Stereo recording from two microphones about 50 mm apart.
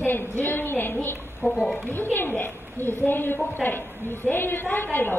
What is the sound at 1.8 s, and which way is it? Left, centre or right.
A woman's voice, left.